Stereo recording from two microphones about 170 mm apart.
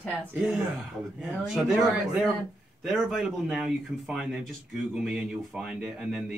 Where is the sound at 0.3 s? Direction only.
10° right (ahead or behind).